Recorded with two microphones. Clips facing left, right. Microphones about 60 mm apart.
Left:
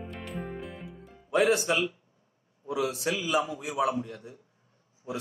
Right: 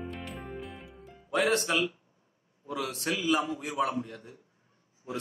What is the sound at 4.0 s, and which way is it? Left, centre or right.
Speech, right.